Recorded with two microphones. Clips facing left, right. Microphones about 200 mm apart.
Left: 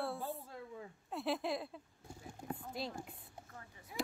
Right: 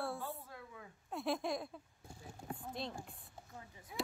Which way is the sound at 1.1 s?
Centre (ahead or behind).